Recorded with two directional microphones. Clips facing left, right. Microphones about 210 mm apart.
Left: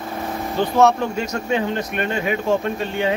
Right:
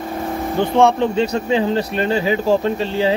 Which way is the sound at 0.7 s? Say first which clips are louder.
Right 2 dB; 30° right (ahead or behind).